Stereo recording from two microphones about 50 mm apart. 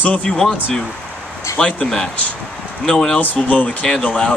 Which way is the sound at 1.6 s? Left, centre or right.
Left.